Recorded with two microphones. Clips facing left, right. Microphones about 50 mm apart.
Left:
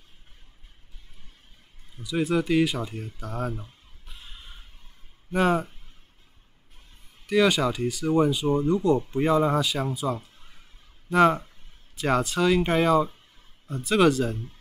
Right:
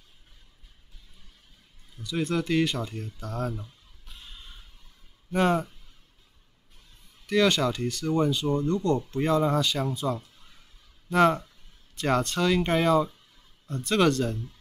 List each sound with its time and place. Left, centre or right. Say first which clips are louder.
2.0 s speech: left 3 dB; centre
4.0 s a sound: left 1 dB; centre
5.3 s speech: left 1 dB; centre
7.2 s speech: left 2 dB; centre